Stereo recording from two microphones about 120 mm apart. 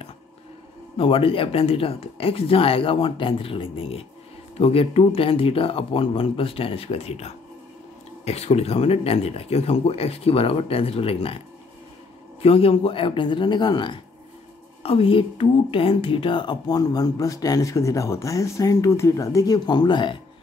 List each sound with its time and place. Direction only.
0.9 s speech: 50° left (ahead or behind)
12.4 s speech: 55° left (ahead or behind)